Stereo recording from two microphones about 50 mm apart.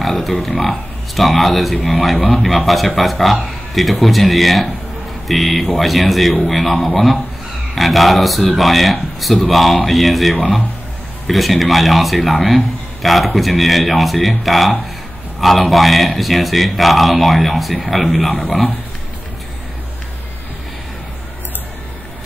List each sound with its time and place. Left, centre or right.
0.0 s a man's voice: centre